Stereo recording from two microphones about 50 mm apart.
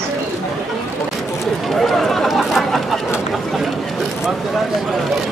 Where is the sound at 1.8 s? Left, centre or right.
Centre.